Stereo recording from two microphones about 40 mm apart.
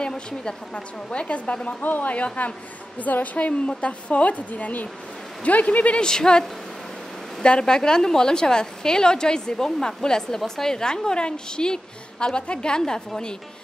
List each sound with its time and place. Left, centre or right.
0.0 s a woman's voice: left
1.8 s a woman's voice: left
5.9 s a woman's voice: centre
7.4 s a woman's voice: left